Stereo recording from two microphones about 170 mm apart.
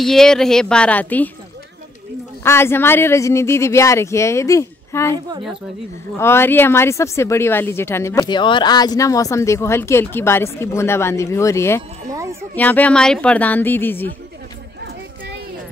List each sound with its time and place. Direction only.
0.0 s speech: 5° left (ahead or behind)
2.4 s speech: 15° left (ahead or behind)
6.1 s speech: 15° left (ahead or behind)